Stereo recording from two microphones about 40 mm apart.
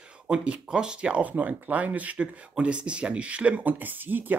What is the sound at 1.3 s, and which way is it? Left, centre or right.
Speech, right.